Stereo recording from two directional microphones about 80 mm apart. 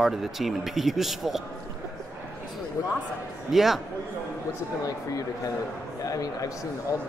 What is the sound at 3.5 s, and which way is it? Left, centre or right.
Speech, centre.